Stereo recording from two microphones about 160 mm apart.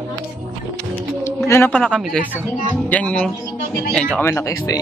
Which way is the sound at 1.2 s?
15° left (ahead or behind).